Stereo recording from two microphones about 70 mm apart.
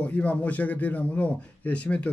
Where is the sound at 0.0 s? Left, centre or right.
Left.